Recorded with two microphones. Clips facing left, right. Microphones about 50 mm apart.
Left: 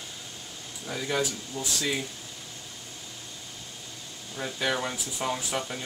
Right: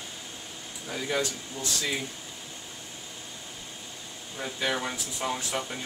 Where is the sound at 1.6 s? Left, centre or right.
Right.